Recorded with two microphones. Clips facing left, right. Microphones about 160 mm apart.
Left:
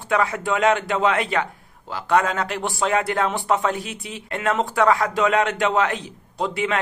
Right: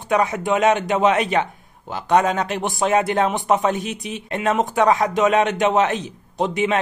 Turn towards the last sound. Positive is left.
turn(degrees=-20)  # may be behind; listen again after turning